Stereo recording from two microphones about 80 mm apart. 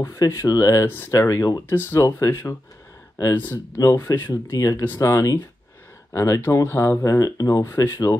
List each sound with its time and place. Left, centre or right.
0.0 s speech: left
0.8 s speech: left
1.1 s speech: left
1.7 s speech: left
2.0 s speech: left
3.7 s speech: left